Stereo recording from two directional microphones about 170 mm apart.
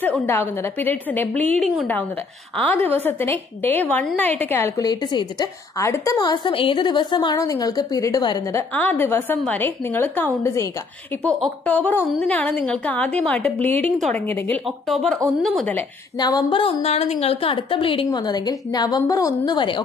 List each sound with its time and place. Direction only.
0.0 s a woman's voice: 10° left (ahead or behind)
16.2 s a woman's voice: 25° left (ahead or behind)